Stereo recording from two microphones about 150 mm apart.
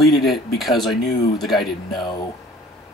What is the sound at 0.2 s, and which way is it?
Speech, centre (ahead or behind).